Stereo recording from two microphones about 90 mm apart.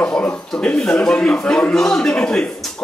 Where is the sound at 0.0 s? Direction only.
10° left (ahead or behind).